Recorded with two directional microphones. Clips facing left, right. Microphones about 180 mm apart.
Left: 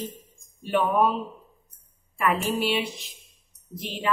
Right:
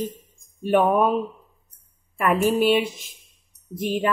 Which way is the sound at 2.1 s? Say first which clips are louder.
Right 5 dB; 50° right (ahead or behind).